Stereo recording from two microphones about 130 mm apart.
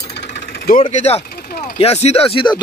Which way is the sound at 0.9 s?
60° left (ahead or behind).